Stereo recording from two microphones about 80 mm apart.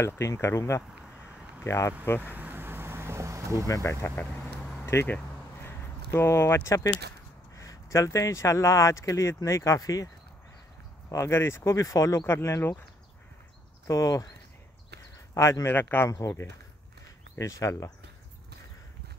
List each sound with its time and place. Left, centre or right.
0.0 s speech: left
2.2 s vehicle: right
3.6 s speech: left
4.8 s a sound: left
7.5 s speech: left
11.1 s speech: left
12.3 s speech: left
13.8 s speech: left
15.6 s speech: left
16.1 s speech: left